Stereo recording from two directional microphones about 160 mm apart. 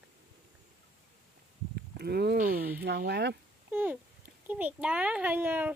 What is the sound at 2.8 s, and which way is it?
Speech, 80° right.